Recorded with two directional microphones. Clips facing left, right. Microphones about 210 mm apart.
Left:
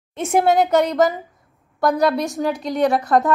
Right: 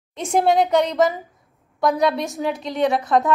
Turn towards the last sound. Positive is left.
turn(degrees=0)  # may be behind; listen again after turning